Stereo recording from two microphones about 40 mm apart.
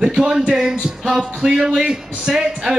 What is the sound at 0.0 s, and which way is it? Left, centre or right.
Speech, right.